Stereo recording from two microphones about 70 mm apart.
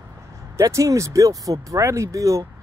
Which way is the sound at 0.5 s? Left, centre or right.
Right.